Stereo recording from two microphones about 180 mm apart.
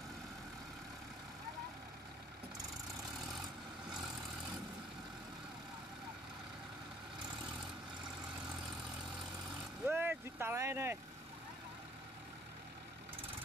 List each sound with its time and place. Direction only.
9.8 s vehicle: 10° right (ahead or behind)